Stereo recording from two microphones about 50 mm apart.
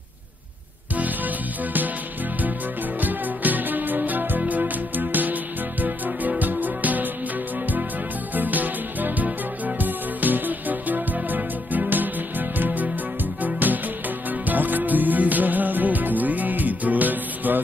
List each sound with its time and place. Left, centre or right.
0.9 s music: right
3.0 s music: right
8.4 s music: right